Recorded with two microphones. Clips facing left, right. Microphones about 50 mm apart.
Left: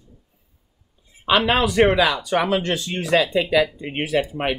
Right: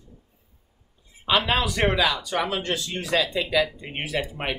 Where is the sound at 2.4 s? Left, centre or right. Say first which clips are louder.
Left 4 dB; left.